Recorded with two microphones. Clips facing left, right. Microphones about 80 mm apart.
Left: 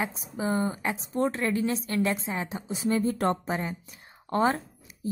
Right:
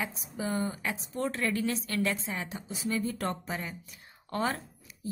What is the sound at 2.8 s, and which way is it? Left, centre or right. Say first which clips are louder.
Speech: left 6 dB; left.